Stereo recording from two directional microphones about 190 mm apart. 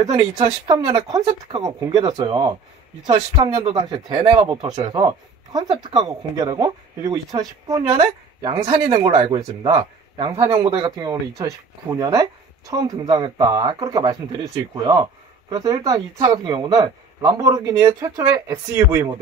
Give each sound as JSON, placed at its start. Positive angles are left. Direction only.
{"t": 0.4, "sound": "speech", "side_deg": -20}
{"t": 7.6, "sound": "speech", "side_deg": -20}